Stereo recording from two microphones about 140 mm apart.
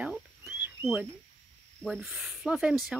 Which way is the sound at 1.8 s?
Centre (ahead or behind).